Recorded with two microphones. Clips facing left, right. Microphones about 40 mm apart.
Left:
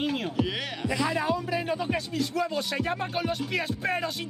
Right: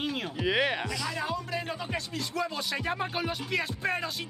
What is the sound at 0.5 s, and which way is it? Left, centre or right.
Music, right.